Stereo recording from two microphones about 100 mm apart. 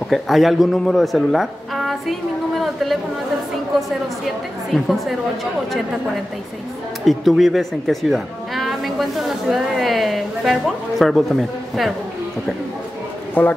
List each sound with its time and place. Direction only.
0.1 s speech: centre (ahead or behind)
4.7 s a woman's voice: centre (ahead or behind)
7.1 s a woman's voice: centre (ahead or behind)
13.3 s a man's voice: 15° left (ahead or behind)